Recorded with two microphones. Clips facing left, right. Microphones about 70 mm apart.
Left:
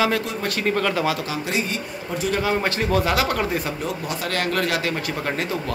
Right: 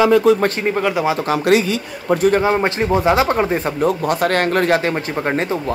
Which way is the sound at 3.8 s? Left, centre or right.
Right.